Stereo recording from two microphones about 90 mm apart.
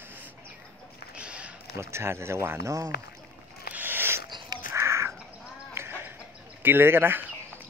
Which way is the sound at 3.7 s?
25° right (ahead or behind).